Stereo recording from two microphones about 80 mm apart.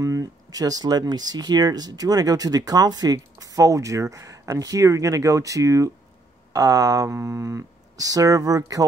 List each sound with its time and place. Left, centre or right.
0.0 s speech: right